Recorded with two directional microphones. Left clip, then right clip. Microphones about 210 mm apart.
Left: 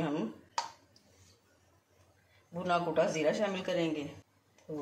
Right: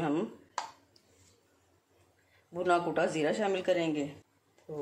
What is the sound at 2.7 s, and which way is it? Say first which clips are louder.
Speech: right 1 dB; 50° right (ahead or behind).